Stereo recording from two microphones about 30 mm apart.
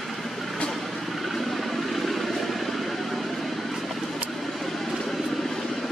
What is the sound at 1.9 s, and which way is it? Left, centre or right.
Vehicle, centre.